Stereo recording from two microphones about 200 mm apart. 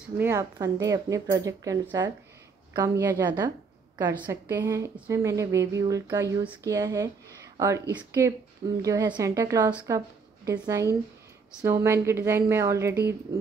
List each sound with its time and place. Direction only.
0.2 s a woman's voice: 15° right (ahead or behind)
4.1 s a woman's voice: 10° right (ahead or behind)
8.8 s a woman's voice: 20° right (ahead or behind)